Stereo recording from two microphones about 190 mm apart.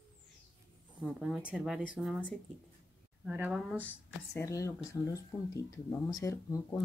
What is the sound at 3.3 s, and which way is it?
Speech, 10° right (ahead or behind).